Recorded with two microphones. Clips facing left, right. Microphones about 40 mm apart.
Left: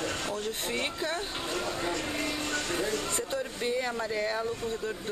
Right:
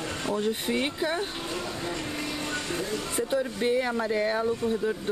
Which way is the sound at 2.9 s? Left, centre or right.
Centre.